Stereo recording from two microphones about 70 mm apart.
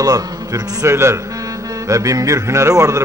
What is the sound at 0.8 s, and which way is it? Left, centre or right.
Speech, right.